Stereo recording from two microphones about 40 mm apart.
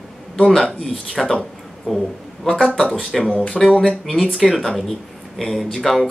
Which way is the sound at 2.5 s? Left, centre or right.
Centre.